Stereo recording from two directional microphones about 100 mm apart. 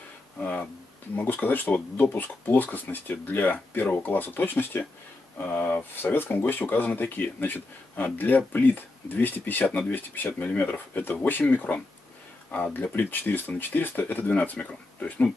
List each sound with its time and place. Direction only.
0.4 s speech: 15° left (ahead or behind)